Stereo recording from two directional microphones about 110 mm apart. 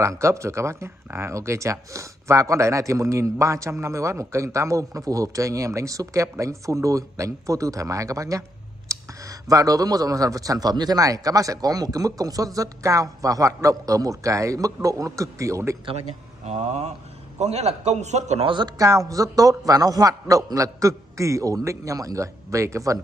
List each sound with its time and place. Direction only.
0.0 s speech: 25° right (ahead or behind)
16.4 s a man's voice: 90° right
17.4 s a man's voice: 75° right (ahead or behind)
18.8 s a man's voice: 30° right (ahead or behind)